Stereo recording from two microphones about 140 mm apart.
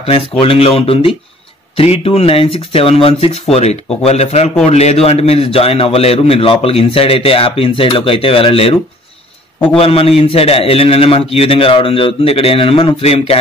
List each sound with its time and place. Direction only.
0.4 s a man's voice: 40° left (ahead or behind)
9.8 s a man's voice: 45° left (ahead or behind)